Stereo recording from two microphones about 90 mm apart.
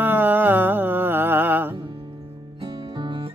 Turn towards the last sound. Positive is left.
turn(degrees=-55)  # may be behind; listen again after turning